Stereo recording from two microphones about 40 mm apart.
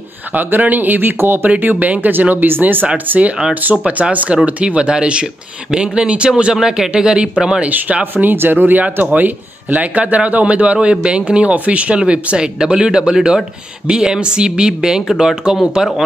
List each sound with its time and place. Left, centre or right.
0.3 s speech: right
1.1 s speech: right
1.6 s speech: right
3.1 s a man's voice: right
6.5 s speech: centre
7.6 s a man's voice: right
8.0 s speech: right
9.1 s a man's voice: right
11.5 s a man's voice: right; by 15.6 s centre